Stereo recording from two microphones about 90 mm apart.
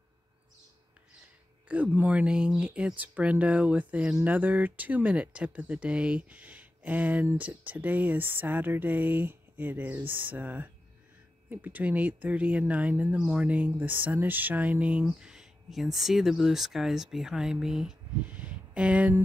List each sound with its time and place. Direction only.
1.7 s speech: 15° right (ahead or behind)